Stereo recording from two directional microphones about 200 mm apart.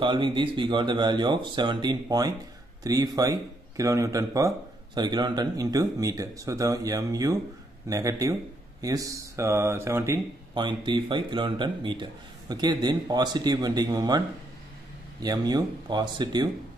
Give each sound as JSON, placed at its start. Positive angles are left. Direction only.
{"t": 0.0, "sound": "speech", "side_deg": -25}
{"t": 10.5, "sound": "speech", "side_deg": -25}
{"t": 15.2, "sound": "speech", "side_deg": -20}